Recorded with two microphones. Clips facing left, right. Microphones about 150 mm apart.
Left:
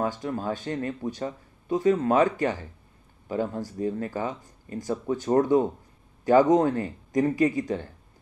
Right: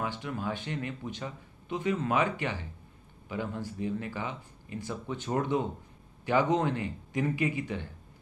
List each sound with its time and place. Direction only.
0.0 s speech: 40° left (ahead or behind)